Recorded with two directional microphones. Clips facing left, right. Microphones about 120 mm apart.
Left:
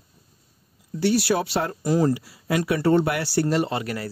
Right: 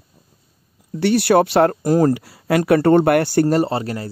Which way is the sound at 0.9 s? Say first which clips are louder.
Right 7 dB; 60° right (ahead or behind).